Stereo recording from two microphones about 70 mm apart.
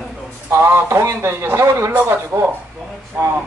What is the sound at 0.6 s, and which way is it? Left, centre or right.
A man's voice, right.